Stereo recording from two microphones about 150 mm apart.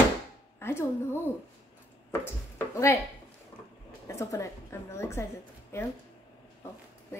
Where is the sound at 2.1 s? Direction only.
15° left (ahead or behind).